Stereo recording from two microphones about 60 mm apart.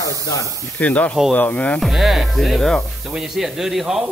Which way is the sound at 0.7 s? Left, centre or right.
Left.